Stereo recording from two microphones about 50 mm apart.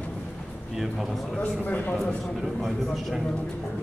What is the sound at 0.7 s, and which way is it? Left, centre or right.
Speech, centre.